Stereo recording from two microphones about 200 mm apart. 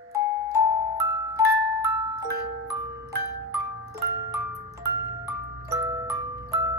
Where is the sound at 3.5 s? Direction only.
15° right (ahead or behind).